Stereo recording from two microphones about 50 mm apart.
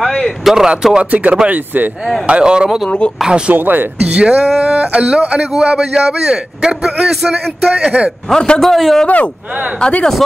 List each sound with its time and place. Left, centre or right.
0.0 s a sound: centre
0.4 s a man's voice: centre
1.1 s speech: right
2.2 s a man's voice: right
3.5 s speech: right
4.1 s a man's voice: right; by 7.3 s centre
7.7 s speech: right
8.3 s a man's voice: centre
8.5 s a man's voice: centre
9.0 s speech: left